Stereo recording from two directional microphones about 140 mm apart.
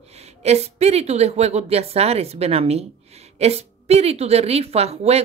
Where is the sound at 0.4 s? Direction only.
50° right (ahead or behind).